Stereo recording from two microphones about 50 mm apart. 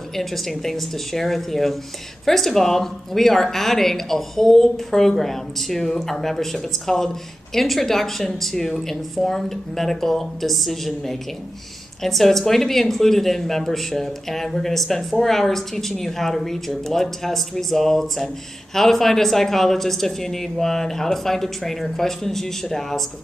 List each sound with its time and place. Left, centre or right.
0.1 s speech: centre